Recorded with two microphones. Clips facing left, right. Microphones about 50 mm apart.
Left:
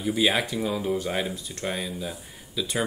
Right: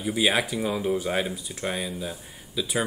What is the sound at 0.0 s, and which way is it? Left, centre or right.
Speech, centre.